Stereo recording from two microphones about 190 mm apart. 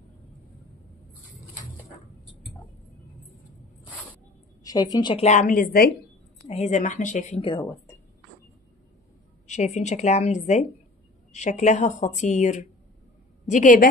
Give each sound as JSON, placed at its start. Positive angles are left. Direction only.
{"t": 4.9, "sound": "speech", "side_deg": 25}
{"t": 5.2, "sound": "a woman's voice", "side_deg": 40}
{"t": 6.4, "sound": "speech", "side_deg": 35}
{"t": 7.4, "sound": "speech", "side_deg": 25}
{"t": 9.5, "sound": "a woman's voice", "side_deg": 35}